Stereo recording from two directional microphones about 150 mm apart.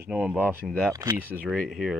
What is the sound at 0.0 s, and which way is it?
Speech, 10° right (ahead or behind).